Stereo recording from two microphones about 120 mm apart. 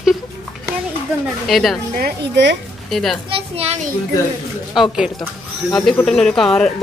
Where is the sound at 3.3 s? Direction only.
55° right (ahead or behind).